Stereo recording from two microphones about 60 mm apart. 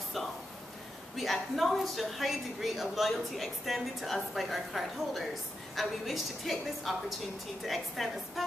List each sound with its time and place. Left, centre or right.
1.1 s a woman's voice: centre